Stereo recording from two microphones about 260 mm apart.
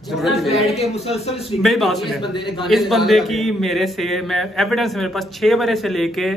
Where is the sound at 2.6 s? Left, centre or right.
Centre.